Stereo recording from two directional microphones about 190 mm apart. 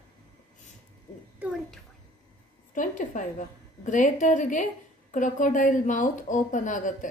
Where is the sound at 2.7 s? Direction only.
45° left (ahead or behind).